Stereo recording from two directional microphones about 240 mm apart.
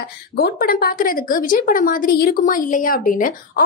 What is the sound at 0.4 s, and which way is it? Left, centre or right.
A woman's voice, left.